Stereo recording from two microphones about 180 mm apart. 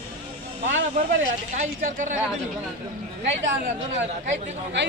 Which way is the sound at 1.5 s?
45° right (ahead or behind).